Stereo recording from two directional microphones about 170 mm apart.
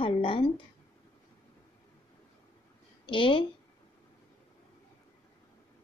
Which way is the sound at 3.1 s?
30° left (ahead or behind).